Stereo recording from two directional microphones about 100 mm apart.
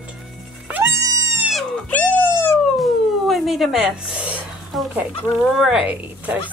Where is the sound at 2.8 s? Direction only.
Centre (ahead or behind).